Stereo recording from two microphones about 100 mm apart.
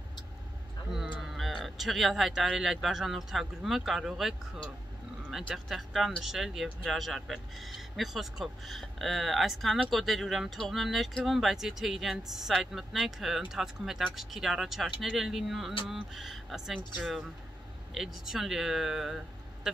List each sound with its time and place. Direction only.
1.2 s speech: centre (ahead or behind)
5.5 s speech: centre (ahead or behind)